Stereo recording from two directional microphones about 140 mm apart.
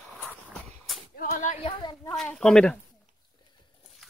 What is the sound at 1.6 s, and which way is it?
Speech, 35° left (ahead or behind).